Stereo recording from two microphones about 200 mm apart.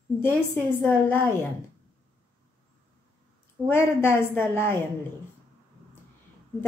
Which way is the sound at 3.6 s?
10° left (ahead or behind).